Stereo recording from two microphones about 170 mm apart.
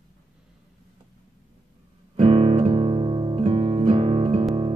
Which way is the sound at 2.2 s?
35° right (ahead or behind).